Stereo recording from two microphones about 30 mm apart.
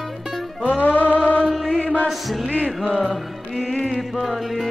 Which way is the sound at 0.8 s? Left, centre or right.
Left.